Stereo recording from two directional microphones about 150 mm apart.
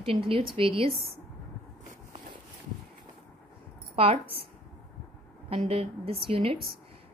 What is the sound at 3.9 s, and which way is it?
Speech, 40° right (ahead or behind).